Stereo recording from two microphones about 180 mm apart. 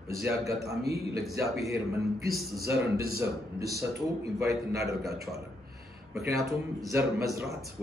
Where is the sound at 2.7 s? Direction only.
60° right (ahead or behind).